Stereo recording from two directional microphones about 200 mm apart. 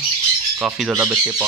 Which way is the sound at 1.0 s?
15° right (ahead or behind).